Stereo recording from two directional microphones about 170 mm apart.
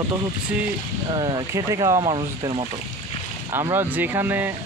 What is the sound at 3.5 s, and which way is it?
Speech, 15° right (ahead or behind).